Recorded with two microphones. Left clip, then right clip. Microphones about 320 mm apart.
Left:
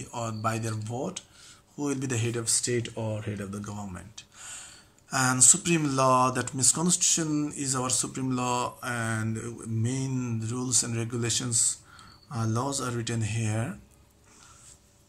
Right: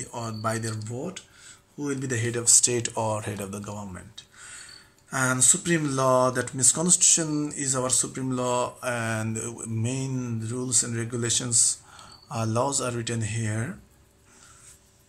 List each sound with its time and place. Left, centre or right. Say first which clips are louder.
0.0 s speech: even; centre
2.9 s speech: right 7 dB; right
3.2 s speech: right 4 dB; centre